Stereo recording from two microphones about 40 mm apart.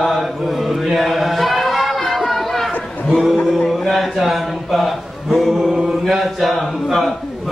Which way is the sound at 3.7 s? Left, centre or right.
Centre.